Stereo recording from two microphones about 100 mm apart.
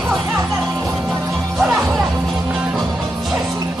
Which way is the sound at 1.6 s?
Centre (ahead or behind).